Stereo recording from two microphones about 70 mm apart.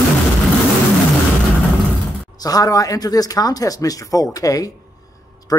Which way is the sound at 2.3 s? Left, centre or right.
Left.